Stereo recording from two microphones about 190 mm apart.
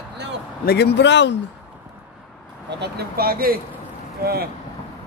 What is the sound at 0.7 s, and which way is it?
Speech, 60° left (ahead or behind).